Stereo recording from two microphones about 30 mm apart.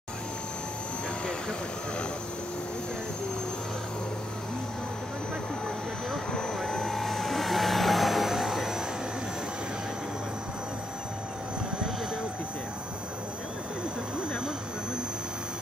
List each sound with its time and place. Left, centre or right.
6.1 s vehicle: centre